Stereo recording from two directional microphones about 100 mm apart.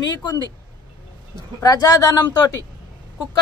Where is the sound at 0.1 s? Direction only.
45° left (ahead or behind).